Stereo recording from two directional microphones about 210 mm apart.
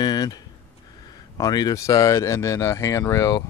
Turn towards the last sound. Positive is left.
turn(degrees=15)  # may be behind; listen again after turning